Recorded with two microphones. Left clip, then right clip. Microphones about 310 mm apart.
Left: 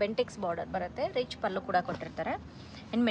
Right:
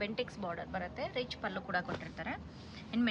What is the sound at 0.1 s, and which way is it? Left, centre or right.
Speech, centre.